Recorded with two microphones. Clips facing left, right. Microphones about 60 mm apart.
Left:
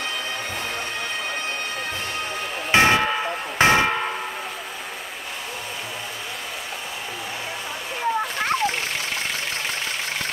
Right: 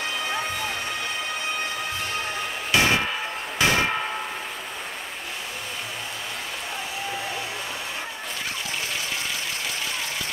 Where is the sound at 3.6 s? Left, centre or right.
Left.